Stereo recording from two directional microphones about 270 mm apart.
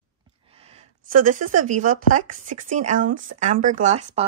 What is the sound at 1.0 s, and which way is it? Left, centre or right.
Speech, right.